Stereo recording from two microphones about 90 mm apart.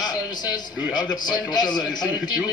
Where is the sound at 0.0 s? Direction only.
50° left (ahead or behind).